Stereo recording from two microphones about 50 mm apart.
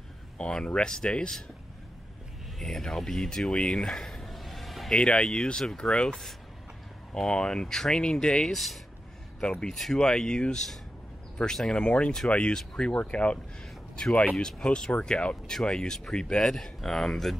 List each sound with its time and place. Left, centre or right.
0.4 s speech: centre
2.6 s a sound: centre
4.9 s speech: centre
14.6 s speech: centre